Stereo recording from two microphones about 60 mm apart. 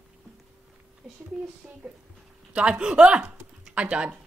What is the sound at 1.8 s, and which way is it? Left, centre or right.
A woman's voice, centre.